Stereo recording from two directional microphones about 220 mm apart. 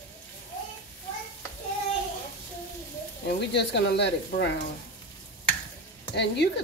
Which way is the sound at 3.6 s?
50° left (ahead or behind).